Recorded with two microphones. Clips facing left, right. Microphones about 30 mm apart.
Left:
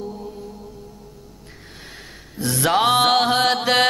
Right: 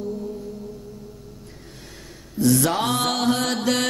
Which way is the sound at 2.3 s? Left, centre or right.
Left.